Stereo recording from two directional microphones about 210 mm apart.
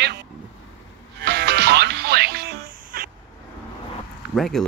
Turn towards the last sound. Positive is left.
turn(degrees=0)  # may be behind; listen again after turning